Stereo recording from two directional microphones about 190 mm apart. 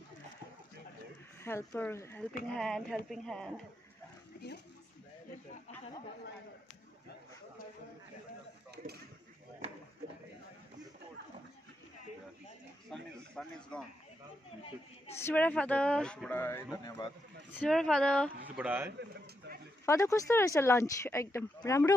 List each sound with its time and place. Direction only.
1.4 s speech: 15° left (ahead or behind)
2.5 s speech: centre (ahead or behind)
12.9 s a man's voice: 5° left (ahead or behind)
15.1 s speech: 10° left (ahead or behind)
17.5 s speech: 5° left (ahead or behind)
18.4 s speech: 10° right (ahead or behind)
19.9 s speech: 15° left (ahead or behind)